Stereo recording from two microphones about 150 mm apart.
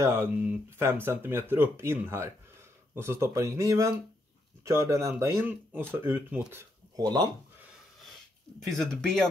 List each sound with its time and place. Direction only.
0.0 s speech: 15° right (ahead or behind)
7.0 s speech: 30° right (ahead or behind)
8.6 s speech: centre (ahead or behind)